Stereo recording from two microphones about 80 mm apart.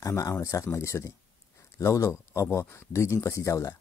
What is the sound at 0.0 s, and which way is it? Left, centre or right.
Speech, left.